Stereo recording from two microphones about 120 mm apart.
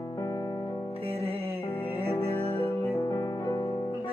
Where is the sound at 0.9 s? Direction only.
55° right (ahead or behind).